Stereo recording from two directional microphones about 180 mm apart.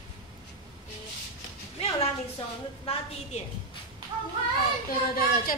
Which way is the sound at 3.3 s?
40° left (ahead or behind).